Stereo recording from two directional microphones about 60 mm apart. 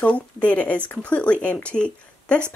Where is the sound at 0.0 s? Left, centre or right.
Left.